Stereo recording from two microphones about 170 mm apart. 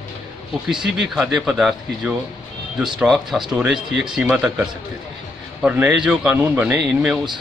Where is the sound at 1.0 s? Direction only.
Centre (ahead or behind).